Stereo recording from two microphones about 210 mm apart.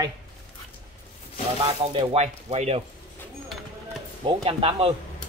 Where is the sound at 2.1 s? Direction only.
30° right (ahead or behind).